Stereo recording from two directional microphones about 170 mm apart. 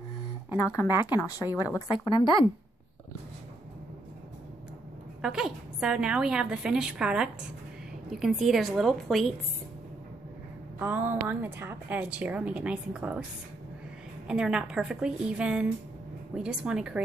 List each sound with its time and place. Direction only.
1.0 s speech: 20° left (ahead or behind)
5.2 s a woman's voice: 5° right (ahead or behind)
10.8 s a woman's voice: 10° right (ahead or behind)
14.2 s a woman's voice: 5° right (ahead or behind)